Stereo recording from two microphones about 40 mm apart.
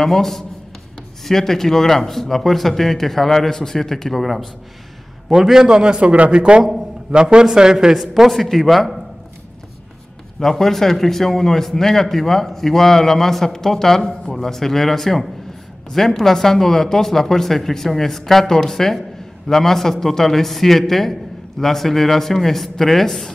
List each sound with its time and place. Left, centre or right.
0.0 s speech: centre
5.3 s a man's voice: centre
6.6 s a man's voice: centre
10.4 s speech: centre